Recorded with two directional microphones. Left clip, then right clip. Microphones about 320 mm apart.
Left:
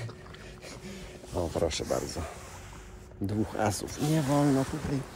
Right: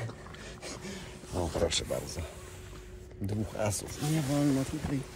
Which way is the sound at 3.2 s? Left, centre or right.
Left.